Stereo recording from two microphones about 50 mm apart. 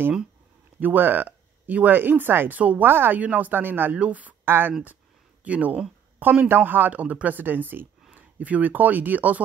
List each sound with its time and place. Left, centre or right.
0.7 s speech: right
3.2 s speech: right
3.9 s speech: right
4.5 s speech: right
5.4 s speech: right
6.9 s speech: right